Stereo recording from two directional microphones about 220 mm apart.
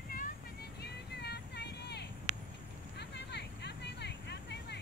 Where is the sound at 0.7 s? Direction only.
50° left (ahead or behind).